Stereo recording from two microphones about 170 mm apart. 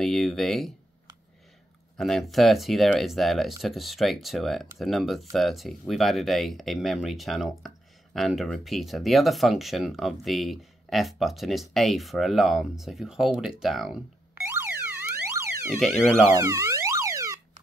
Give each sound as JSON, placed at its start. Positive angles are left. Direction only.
{"t": 0.0, "sound": "speech", "side_deg": 0}
{"t": 2.0, "sound": "speech", "side_deg": 0}
{"t": 14.5, "sound": "siren", "side_deg": -10}
{"t": 16.3, "sound": "a sound", "side_deg": -15}